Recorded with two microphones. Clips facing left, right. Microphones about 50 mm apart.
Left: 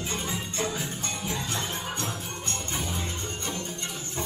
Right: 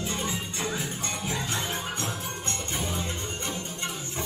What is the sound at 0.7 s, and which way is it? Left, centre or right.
Music, right.